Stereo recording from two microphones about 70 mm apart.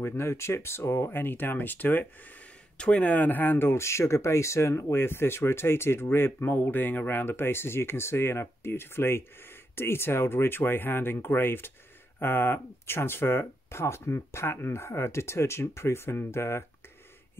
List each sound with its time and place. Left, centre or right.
0.0 s speech: left